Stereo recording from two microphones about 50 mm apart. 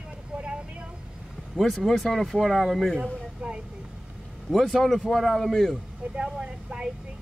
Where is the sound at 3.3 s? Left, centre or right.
Right.